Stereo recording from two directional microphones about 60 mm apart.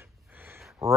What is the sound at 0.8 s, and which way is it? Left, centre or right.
Speech, centre.